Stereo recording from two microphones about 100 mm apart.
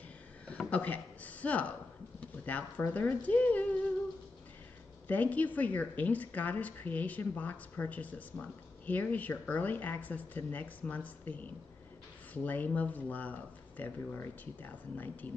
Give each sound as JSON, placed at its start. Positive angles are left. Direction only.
{"t": 0.7, "sound": "a man's voice", "side_deg": 15}
{"t": 5.0, "sound": "speech", "side_deg": 15}